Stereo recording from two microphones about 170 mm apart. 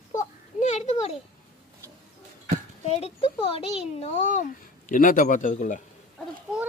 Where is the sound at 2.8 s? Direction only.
35° left (ahead or behind).